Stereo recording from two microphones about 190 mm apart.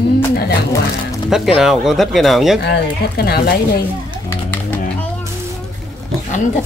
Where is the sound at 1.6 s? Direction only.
Centre (ahead or behind).